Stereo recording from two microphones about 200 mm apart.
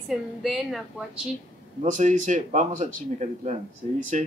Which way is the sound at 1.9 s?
40° right (ahead or behind).